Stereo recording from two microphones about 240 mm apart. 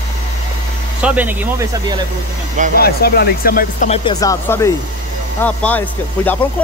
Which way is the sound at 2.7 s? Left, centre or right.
Left.